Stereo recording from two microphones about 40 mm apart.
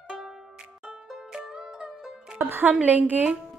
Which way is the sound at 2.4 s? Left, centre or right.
Right.